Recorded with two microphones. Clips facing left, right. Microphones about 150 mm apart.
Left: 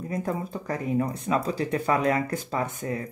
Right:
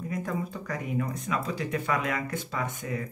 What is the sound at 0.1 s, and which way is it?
Speech, 35° left (ahead or behind).